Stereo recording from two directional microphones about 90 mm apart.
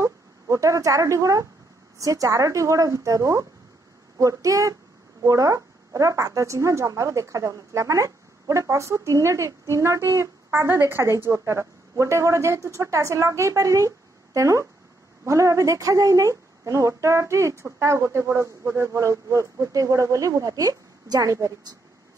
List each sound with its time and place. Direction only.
0.0 s a woman's voice: 35° right (ahead or behind)